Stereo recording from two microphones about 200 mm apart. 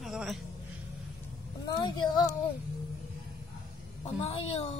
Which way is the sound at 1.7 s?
20° left (ahead or behind).